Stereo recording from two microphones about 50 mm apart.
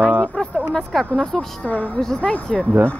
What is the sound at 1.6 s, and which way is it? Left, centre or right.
Speech, left.